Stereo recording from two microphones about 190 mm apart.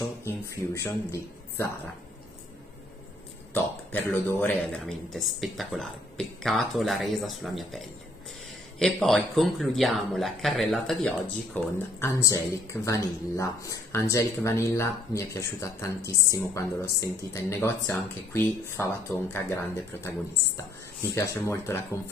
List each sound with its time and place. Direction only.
0.2 s speech: 15° left (ahead or behind)
3.5 s a man's voice: 10° left (ahead or behind)